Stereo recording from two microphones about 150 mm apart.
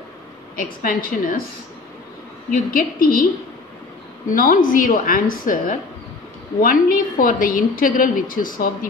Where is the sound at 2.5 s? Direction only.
70° left (ahead or behind).